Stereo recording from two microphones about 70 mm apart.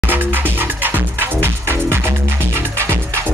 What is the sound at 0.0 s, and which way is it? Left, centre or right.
Music, right.